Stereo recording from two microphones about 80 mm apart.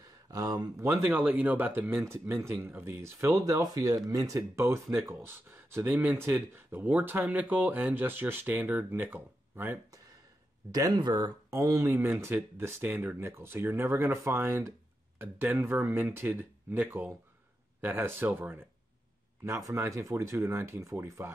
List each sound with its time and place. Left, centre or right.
0.3 s speech: right
0.9 s speech: right
2.0 s speech: right
3.6 s speech: right
4.4 s speech: right
5.9 s speech: centre
9.8 s a sound: right
10.7 s speech: right
11.5 s speech: right
19.4 s speech: right